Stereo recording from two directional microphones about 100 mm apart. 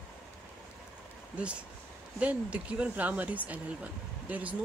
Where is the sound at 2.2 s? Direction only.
10° right (ahead or behind).